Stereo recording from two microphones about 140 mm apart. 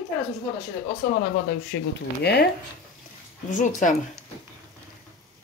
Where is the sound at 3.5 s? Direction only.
65° left (ahead or behind).